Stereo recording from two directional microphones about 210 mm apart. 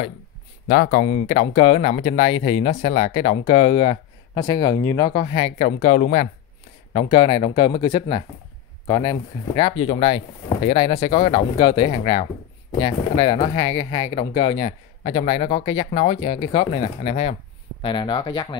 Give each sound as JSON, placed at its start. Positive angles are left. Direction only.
{"t": 0.7, "sound": "speech", "side_deg": 50}
{"t": 1.0, "sound": "speech", "side_deg": 30}
{"t": 6.9, "sound": "speech", "side_deg": 25}